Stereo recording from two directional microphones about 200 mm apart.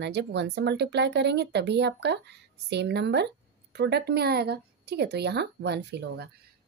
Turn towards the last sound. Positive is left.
turn(degrees=-55)  # may be behind; listen again after turning